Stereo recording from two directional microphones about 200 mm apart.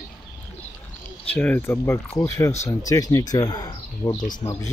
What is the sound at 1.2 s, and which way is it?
Speech, 10° left (ahead or behind).